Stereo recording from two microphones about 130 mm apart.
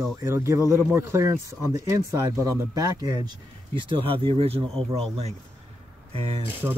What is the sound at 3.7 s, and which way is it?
Speech, 40° right (ahead or behind).